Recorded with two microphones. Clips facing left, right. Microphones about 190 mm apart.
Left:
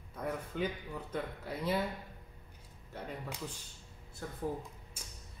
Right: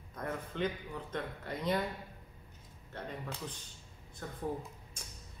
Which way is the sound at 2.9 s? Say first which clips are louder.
Even; 10° left (ahead or behind).